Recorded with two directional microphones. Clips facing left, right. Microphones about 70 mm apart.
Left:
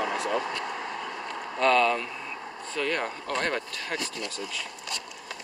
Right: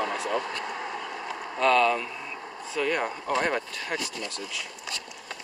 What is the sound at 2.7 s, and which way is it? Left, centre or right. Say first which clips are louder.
Speech: right 2 dB; centre.